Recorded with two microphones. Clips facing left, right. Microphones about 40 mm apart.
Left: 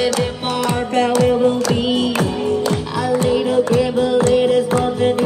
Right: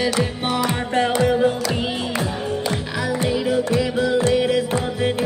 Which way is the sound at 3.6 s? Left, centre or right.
Left.